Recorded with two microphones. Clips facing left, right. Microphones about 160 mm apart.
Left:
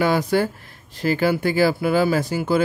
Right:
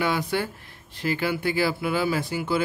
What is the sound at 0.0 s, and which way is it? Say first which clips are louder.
Speech: left 6 dB; 40° left (ahead or behind).